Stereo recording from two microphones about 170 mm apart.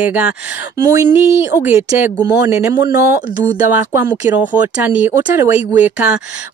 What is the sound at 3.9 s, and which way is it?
Speech, 10° right (ahead or behind).